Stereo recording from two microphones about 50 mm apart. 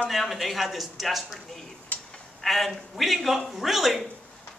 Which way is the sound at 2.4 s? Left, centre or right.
Centre.